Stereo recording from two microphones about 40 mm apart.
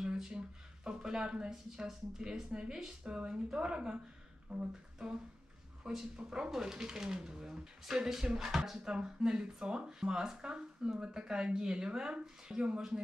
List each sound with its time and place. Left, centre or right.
0.0 s a sound: centre
0.8 s speech: centre
5.0 s speech: centre